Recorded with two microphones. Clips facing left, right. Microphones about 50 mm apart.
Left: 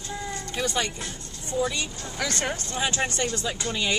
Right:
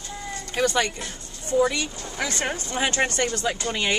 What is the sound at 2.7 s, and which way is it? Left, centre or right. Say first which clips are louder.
Speech: right 5 dB; right.